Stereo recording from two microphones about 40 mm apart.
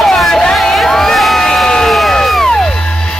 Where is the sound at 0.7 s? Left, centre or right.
Centre.